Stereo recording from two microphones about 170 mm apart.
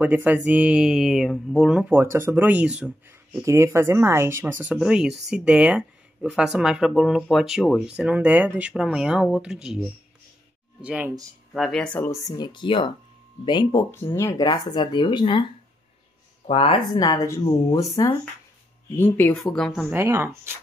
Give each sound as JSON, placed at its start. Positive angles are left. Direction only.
{"t": 0.0, "sound": "speech", "side_deg": -10}
{"t": 2.0, "sound": "speech", "side_deg": -15}
{"t": 3.4, "sound": "speech", "side_deg": -15}
{"t": 16.4, "sound": "speech", "side_deg": 35}
{"t": 19.9, "sound": "speech", "side_deg": -15}